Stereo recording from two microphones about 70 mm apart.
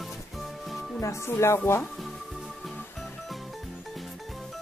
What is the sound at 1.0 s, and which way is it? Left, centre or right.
Music, left.